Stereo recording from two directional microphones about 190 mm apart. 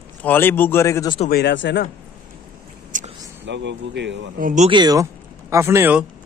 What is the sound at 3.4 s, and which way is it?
Speech, 70° right (ahead or behind).